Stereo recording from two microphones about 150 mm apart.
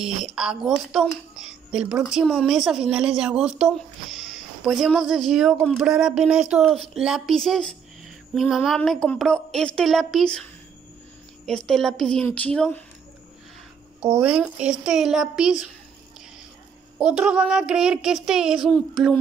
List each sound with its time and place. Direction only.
0.0 s a woman's voice: 5° right (ahead or behind)
11.4 s a woman's voice: 5° left (ahead or behind)
14.2 s a woman's voice: 10° right (ahead or behind)
17.1 s a woman's voice: 10° right (ahead or behind)